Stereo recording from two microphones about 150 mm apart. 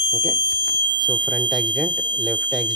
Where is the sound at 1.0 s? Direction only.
Centre (ahead or behind).